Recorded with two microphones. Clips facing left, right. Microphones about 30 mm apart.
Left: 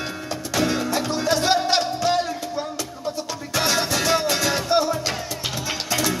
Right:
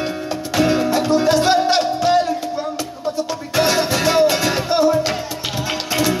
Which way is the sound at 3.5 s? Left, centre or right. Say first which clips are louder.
Right 5 dB; centre.